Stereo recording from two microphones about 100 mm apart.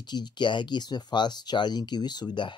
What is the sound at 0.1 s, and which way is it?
Speech, 50° left (ahead or behind).